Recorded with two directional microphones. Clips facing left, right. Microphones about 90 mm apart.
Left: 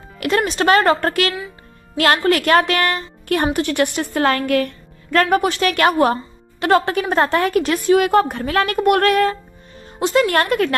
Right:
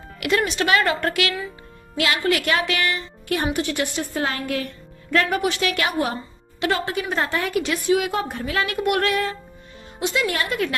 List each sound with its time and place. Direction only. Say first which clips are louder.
0.4 s a woman's voice: left 7 dB; 40° left (ahead or behind); by 5.2 s 65° left (ahead or behind)
5.2 s a woman's voice: left 8 dB; 45° left (ahead or behind)